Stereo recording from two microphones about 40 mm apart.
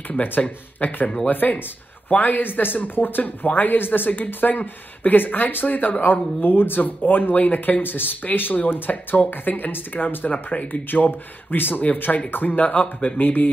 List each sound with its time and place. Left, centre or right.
0.4 s speech: left
6.4 s speech: left
7.1 s speech: left
10.3 s speech: left
10.7 s speech: left
11.8 s speech: left